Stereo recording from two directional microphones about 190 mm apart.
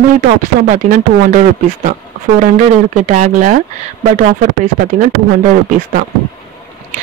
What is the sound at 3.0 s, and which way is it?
Speech, 40° right (ahead or behind).